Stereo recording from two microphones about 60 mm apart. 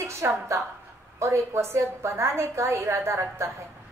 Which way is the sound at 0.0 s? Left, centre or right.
Right.